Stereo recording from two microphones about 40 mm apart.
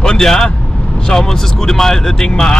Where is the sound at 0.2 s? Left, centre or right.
Centre.